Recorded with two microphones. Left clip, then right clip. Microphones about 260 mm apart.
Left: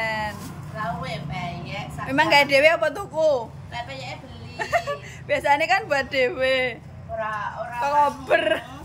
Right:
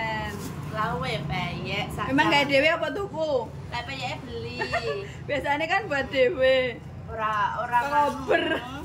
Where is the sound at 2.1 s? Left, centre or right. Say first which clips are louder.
Left 4 dB; centre.